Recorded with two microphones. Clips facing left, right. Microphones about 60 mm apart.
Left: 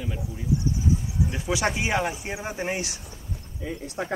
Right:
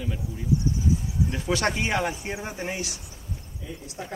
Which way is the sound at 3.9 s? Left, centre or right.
Left.